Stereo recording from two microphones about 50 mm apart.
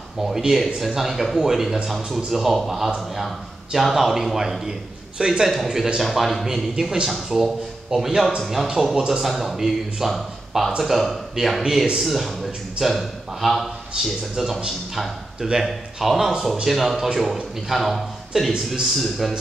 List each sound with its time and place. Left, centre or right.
0.2 s a man's voice: centre
8.9 s a man's voice: centre
9.2 s a man's voice: centre
14.0 s a man's voice: centre